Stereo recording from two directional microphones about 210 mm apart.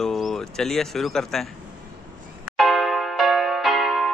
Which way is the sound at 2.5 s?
Centre (ahead or behind).